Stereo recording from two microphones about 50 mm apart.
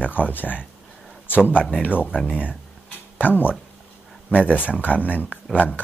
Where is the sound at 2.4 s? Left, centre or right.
Left.